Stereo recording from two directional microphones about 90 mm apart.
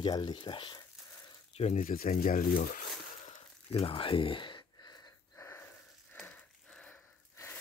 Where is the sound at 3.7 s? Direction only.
90° left; by 5.0 s 50° left (ahead or behind).